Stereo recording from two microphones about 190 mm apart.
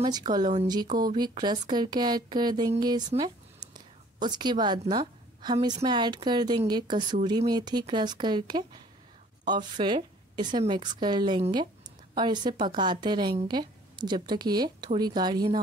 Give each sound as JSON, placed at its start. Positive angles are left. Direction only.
{"t": 0.0, "sound": "a woman's voice", "side_deg": -20}